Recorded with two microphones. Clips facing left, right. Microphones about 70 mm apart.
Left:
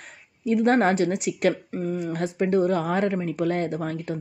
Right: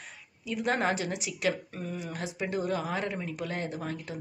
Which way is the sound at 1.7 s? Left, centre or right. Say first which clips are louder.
Left 10 dB; left.